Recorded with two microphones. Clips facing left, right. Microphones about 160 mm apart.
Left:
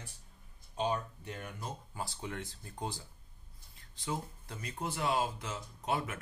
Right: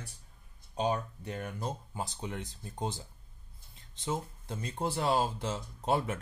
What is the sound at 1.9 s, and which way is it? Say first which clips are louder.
Speech: right 2 dB; 20° right (ahead or behind).